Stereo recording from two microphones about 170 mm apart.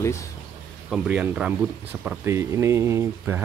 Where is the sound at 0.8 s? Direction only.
5° right (ahead or behind).